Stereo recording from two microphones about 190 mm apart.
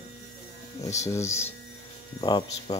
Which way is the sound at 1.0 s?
15° left (ahead or behind).